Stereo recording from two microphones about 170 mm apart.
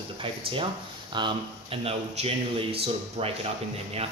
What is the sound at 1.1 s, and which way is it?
Speech, 30° right (ahead or behind).